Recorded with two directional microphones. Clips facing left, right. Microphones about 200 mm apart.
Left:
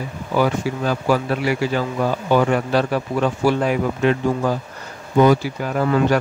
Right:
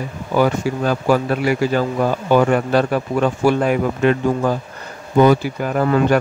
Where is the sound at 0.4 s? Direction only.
50° right (ahead or behind).